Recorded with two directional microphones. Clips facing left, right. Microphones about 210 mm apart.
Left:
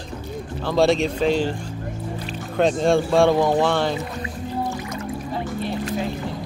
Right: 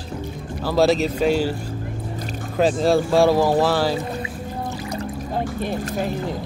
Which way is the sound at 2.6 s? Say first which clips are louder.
Even; 5° right (ahead or behind).